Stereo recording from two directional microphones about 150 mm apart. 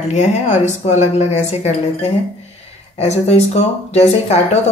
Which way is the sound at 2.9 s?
45° left (ahead or behind).